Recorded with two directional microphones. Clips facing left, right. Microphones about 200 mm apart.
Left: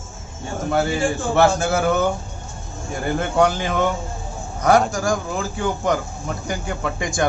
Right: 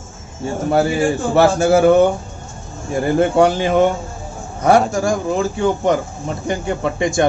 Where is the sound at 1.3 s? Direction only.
35° right (ahead or behind).